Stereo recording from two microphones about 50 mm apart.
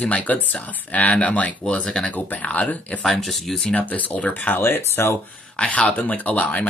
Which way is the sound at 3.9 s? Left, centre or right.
Left.